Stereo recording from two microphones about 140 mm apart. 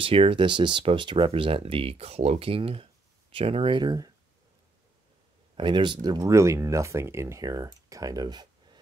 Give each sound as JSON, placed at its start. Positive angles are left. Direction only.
{"t": 0.0, "sound": "speech", "side_deg": -40}
{"t": 5.6, "sound": "speech", "side_deg": -35}